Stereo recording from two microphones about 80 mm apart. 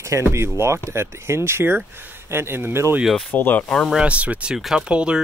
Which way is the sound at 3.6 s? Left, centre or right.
Centre.